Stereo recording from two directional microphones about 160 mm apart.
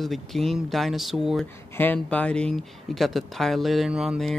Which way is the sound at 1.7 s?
10° left (ahead or behind).